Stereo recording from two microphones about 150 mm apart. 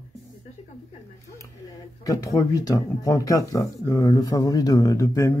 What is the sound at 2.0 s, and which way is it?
Speech, 20° left (ahead or behind).